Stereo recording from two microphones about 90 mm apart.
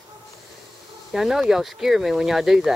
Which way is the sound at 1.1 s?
5° right (ahead or behind).